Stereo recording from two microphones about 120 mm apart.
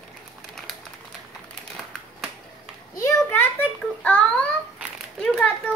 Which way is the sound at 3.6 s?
10° left (ahead or behind).